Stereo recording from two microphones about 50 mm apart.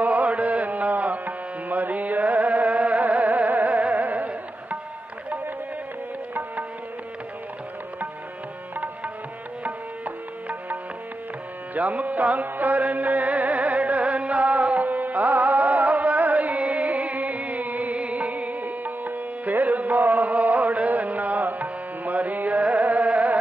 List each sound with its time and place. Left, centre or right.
0.0 s music: right
8.7 s music: right